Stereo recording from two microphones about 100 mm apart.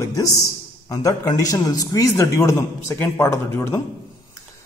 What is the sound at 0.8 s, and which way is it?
A man's voice, 35° left (ahead or behind).